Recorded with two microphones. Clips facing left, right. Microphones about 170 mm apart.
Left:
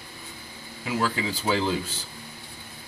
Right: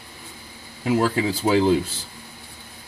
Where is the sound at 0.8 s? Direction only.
40° right (ahead or behind).